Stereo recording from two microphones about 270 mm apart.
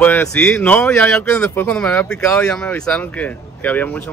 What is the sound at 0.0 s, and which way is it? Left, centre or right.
Speech, centre.